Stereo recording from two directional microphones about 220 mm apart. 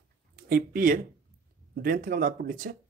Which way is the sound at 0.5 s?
40° right (ahead or behind).